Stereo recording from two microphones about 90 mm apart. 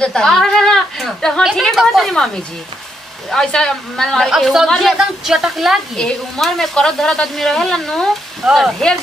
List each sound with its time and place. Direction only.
0.0 s a woman's voice: 5° left (ahead or behind)
3.3 s speech: 5° left (ahead or behind)
5.9 s speech: 5° left (ahead or behind)